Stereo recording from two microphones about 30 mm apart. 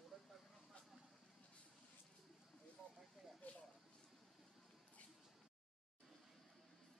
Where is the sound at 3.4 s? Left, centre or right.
Left.